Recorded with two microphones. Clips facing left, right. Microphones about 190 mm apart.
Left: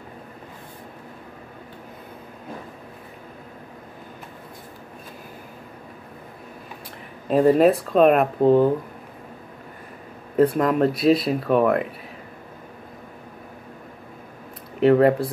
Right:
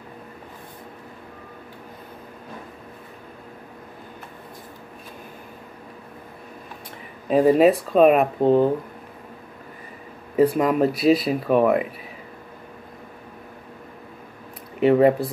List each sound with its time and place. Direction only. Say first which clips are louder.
7.2 s speech: even; centre (ahead or behind)
10.3 s speech: even; 5° right (ahead or behind)
14.8 s speech: even; centre (ahead or behind)